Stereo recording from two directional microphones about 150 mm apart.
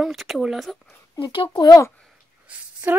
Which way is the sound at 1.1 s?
35° left (ahead or behind).